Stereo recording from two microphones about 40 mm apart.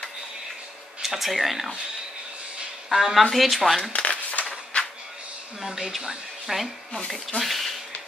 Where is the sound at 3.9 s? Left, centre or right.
Left.